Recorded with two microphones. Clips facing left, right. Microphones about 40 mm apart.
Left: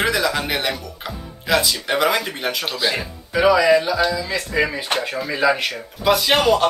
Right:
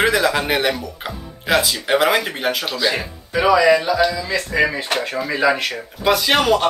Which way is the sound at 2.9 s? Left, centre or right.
Centre.